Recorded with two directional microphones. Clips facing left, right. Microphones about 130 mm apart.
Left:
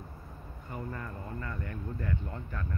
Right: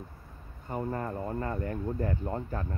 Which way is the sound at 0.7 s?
40° right (ahead or behind).